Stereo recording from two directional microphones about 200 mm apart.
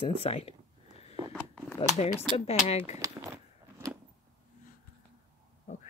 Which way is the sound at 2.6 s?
30° left (ahead or behind).